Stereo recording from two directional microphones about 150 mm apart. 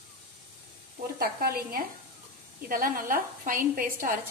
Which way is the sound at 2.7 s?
70° right (ahead or behind).